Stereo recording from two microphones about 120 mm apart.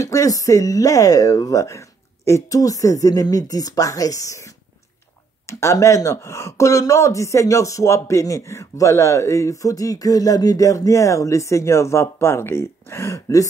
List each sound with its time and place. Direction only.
0.0 s speech: 30° left (ahead or behind)